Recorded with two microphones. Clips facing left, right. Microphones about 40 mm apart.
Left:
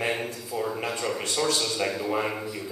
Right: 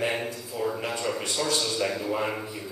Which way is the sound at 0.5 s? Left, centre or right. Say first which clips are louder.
Even; left.